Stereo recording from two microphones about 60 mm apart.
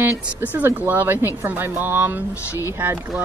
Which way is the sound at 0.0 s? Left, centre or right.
Right.